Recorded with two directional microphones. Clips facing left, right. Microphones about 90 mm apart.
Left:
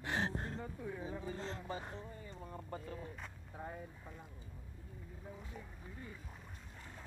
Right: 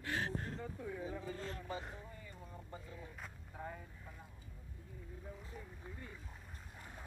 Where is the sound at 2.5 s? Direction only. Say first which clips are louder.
Left 7 dB; 55° left (ahead or behind).